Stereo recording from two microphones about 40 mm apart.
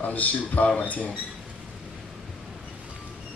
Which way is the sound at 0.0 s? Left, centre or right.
Left.